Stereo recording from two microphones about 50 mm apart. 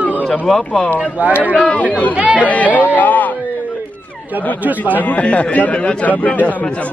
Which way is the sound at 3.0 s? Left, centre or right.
Left.